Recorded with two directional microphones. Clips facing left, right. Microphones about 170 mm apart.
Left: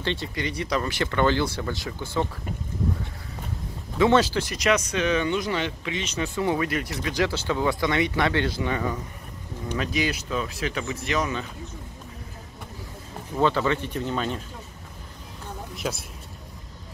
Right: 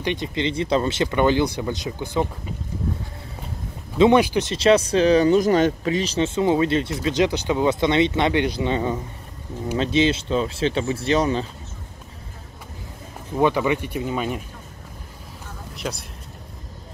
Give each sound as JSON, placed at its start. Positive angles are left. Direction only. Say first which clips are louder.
{"t": 0.0, "sound": "speech", "louder": "right 5 dB", "side_deg": -15}
{"t": 4.0, "sound": "speech", "louder": "right 4 dB", "side_deg": -15}
{"t": 13.4, "sound": "speech", "louder": "right 3 dB", "side_deg": -15}
{"t": 15.7, "sound": "speech", "louder": "right 1 dB", "side_deg": 0}